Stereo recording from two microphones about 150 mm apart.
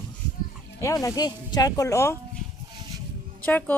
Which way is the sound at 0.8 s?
20° left (ahead or behind).